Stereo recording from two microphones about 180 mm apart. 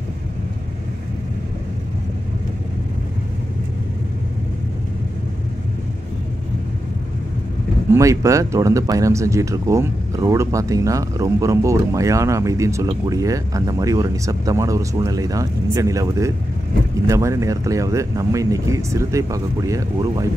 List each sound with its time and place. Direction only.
7.9 s speech: 15° right (ahead or behind)